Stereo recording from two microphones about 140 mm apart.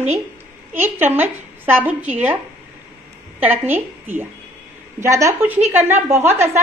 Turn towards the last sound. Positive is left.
turn(degrees=-15)  # may be behind; listen again after turning